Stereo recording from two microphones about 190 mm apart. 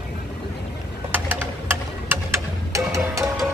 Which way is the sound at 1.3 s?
10° right (ahead or behind).